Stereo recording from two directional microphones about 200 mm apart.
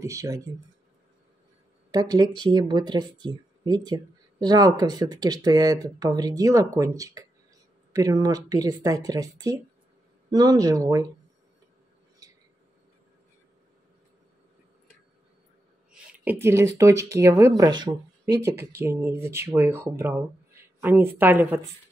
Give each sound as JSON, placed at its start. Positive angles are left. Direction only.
{"t": 0.0, "sound": "speech", "side_deg": -15}
{"t": 1.9, "sound": "speech", "side_deg": -20}
{"t": 12.2, "sound": "a sound", "side_deg": -15}
{"t": 15.9, "sound": "speech", "side_deg": -10}